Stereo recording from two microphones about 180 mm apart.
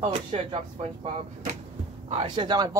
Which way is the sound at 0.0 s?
35° right (ahead or behind).